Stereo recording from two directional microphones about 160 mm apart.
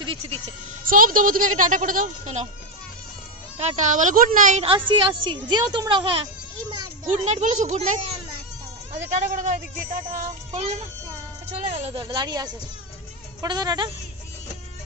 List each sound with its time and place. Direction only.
0.0 s speech: 35° right (ahead or behind)
0.8 s a woman's voice: 60° right (ahead or behind)
3.5 s speech: 50° right (ahead or behind)
4.6 s a woman's voice: 30° right (ahead or behind)
7.1 s a child's voice: 50° right (ahead or behind); by 13.8 s 25° right (ahead or behind)